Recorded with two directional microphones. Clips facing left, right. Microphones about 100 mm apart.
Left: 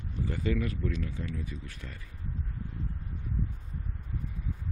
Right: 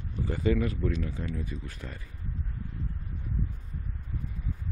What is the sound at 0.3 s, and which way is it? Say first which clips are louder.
Speech: right 4 dB; 25° right (ahead or behind).